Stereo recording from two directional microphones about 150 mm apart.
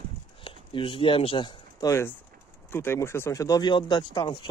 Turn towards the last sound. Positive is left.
turn(degrees=30)  # may be behind; listen again after turning